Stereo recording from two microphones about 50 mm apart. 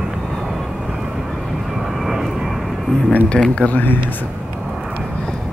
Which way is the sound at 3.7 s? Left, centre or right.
Left.